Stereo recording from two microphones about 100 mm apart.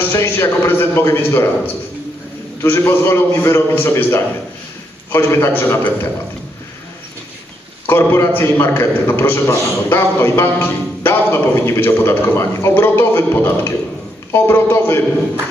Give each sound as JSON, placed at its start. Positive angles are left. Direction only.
{"t": 0.1, "sound": "a man's voice", "side_deg": 25}
{"t": 2.6, "sound": "a man's voice", "side_deg": 20}
{"t": 7.8, "sound": "a man's voice", "side_deg": 20}